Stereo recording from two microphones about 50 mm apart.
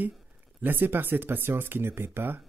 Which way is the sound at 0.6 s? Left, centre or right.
Right.